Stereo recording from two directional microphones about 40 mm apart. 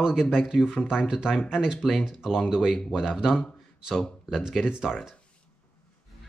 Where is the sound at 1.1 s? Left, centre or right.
Centre.